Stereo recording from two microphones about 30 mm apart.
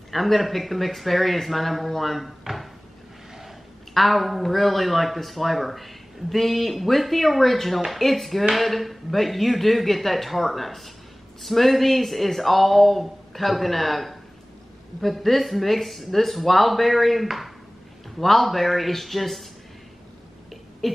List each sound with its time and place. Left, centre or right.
0.1 s speech: centre
3.9 s speech: centre
20.8 s a sound: centre